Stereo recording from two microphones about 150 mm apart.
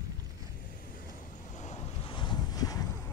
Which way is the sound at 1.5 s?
50° left (ahead or behind).